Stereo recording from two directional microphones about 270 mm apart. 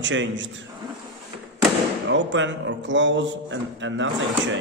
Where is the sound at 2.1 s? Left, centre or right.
Right.